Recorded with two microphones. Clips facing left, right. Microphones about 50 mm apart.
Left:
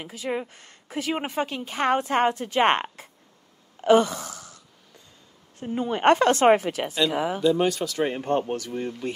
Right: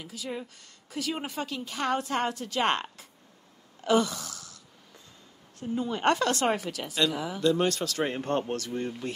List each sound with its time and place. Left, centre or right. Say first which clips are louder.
0.0 s a woman's voice: left 7 dB; left
3.8 s a sound: left 6 dB; left
5.6 s a woman's voice: left 4 dB; left
7.3 s speech: left 2 dB; centre